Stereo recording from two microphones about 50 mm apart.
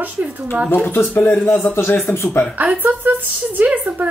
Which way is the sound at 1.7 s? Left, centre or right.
Left.